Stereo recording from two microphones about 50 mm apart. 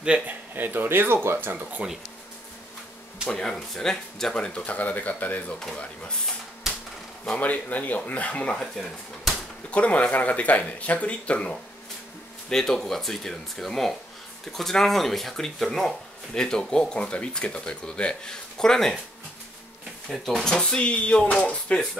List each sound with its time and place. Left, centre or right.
0.3 s a man's voice: right
0.8 s speech: right
1.4 s speech: right
3.3 s speech: centre
4.3 s speech: left
5.5 s speech: centre
6.7 s typewriter: centre
7.3 s speech: left
8.5 s speech: centre
9.7 s speech: left
12.4 s speech: centre
20.2 s speech: centre